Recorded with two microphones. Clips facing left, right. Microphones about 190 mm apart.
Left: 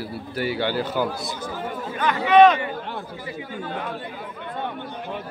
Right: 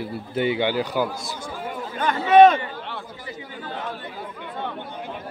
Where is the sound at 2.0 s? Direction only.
50° right (ahead or behind).